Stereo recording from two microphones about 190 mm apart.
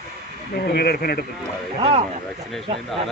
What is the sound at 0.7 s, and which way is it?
Speech, 55° left (ahead or behind).